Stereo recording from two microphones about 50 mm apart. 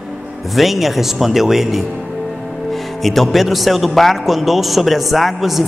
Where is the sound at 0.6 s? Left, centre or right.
Centre.